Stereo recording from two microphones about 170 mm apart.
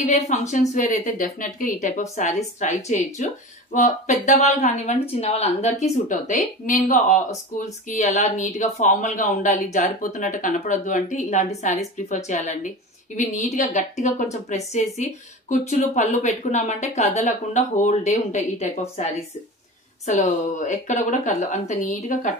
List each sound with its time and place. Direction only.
0.0 s speech: 45° left (ahead or behind)